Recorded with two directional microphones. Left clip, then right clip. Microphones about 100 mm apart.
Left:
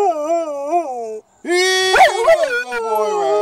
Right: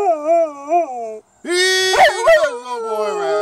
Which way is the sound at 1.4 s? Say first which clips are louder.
Even; 15° right (ahead or behind).